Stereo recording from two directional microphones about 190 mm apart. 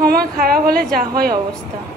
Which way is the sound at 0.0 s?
50° right (ahead or behind).